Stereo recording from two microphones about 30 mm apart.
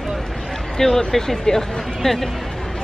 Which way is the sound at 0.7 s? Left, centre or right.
Centre.